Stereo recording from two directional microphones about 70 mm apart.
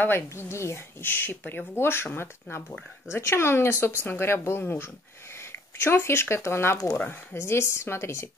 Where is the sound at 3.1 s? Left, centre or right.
Left.